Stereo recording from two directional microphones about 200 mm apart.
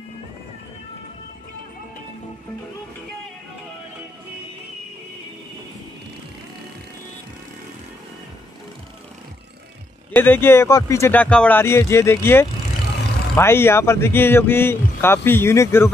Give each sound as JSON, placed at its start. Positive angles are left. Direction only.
{"t": 10.1, "sound": "speech", "side_deg": 10}